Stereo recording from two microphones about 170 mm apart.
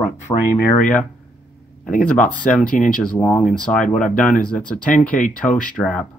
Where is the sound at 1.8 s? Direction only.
50° left (ahead or behind).